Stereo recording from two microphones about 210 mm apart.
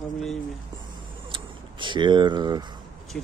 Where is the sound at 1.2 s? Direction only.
25° right (ahead or behind).